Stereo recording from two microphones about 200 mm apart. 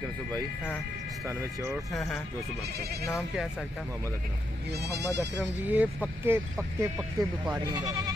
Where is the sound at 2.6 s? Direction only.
50° right (ahead or behind).